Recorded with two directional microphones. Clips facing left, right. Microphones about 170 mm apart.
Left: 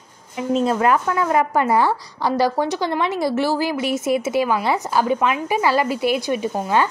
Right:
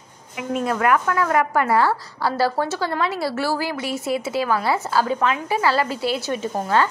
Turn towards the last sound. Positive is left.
turn(degrees=15)  # may be behind; listen again after turning